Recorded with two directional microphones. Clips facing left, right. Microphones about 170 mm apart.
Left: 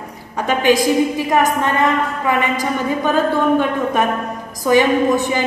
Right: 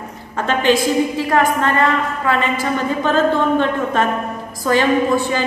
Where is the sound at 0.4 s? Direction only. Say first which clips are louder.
Left 1 dB; 10° left (ahead or behind).